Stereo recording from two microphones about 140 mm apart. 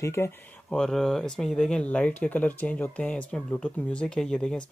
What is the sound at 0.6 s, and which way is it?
Speech, 5° left (ahead or behind).